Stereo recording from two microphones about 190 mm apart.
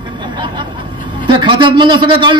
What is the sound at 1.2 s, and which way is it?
A man's voice, 25° right (ahead or behind).